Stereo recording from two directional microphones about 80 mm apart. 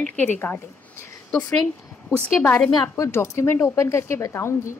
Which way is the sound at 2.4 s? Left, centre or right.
Centre.